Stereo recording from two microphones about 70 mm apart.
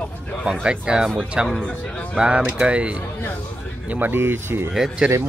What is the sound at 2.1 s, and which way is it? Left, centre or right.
Speech, centre.